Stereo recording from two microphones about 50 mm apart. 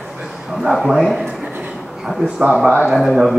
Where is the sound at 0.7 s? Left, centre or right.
Centre.